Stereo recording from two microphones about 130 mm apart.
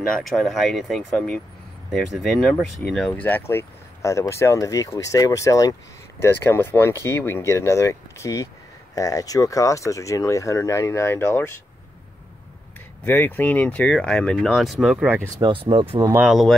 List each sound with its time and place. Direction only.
0.1 s speech: centre (ahead or behind); by 11.5 s 20° left (ahead or behind)
13.0 s speech: 15° left (ahead or behind); by 15.2 s 5° right (ahead or behind)
15.4 s speech: 40° right (ahead or behind)
16.2 s speech: centre (ahead or behind)